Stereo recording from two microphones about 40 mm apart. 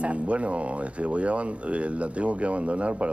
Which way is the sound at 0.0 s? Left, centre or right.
Right.